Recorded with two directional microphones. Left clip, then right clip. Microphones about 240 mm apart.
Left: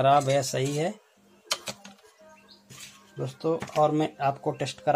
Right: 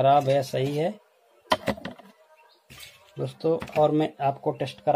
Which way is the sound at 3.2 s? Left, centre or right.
Centre.